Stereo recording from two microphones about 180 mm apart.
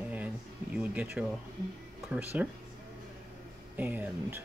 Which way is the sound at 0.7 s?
5° right (ahead or behind).